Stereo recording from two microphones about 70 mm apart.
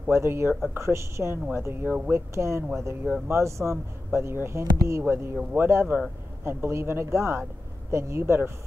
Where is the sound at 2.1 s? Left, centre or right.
Right.